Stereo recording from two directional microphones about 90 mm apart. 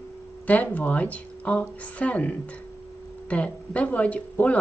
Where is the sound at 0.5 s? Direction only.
15° left (ahead or behind).